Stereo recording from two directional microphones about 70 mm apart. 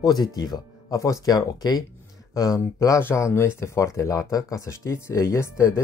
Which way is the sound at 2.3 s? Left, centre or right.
Left.